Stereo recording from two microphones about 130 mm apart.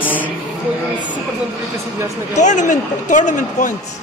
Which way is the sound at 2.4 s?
70° left (ahead or behind).